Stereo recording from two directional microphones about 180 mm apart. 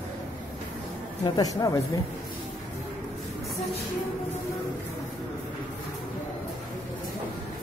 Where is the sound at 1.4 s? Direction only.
20° left (ahead or behind).